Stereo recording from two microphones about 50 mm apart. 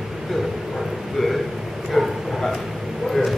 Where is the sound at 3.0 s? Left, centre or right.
Centre.